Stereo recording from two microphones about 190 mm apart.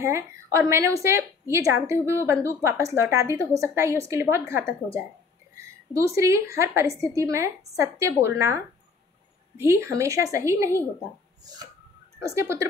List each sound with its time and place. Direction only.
0.0 s a woman's voice: 15° right (ahead or behind)
9.6 s a woman's voice: 15° right (ahead or behind)
11.4 s a sound: 20° right (ahead or behind)
12.2 s a woman's voice: 15° right (ahead or behind)